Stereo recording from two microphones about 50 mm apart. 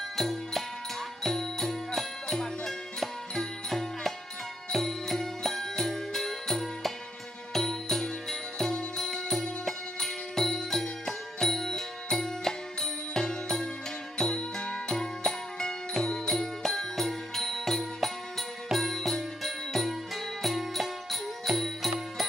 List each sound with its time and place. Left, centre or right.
0.1 s music: centre